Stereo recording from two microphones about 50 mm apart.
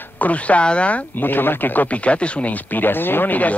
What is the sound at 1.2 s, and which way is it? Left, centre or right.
Speech, left.